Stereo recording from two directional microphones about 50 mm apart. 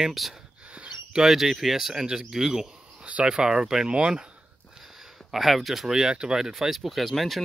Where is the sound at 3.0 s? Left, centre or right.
Right.